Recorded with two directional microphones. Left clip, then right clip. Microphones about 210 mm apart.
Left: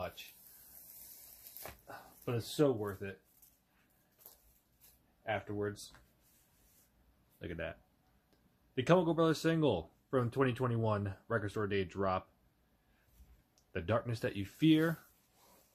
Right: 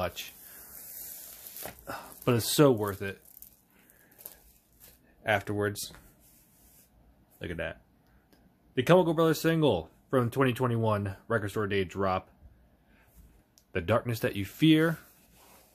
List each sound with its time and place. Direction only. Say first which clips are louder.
1.9 s speech: right 12 dB; 50° right (ahead or behind)
2.9 s speech: right 8 dB; 30° right (ahead or behind)
5.2 s speech: right 9 dB; 50° right (ahead or behind)
7.3 s speech: right 7 dB; 10° right (ahead or behind)
8.7 s speech: right 7 dB; 10° right (ahead or behind)
13.7 s speech: right 7 dB; 10° right (ahead or behind)